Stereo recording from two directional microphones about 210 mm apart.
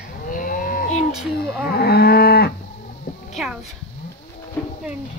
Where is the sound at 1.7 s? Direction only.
50° left (ahead or behind).